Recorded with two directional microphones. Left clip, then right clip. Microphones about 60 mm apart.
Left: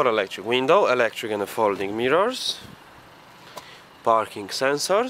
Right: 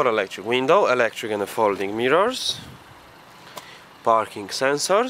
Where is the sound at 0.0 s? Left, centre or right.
Centre.